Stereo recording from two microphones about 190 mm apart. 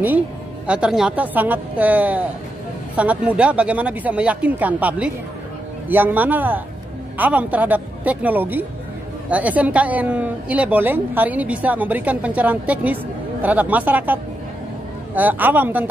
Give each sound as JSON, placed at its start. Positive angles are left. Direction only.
{"t": 0.7, "sound": "a woman's voice", "side_deg": -5}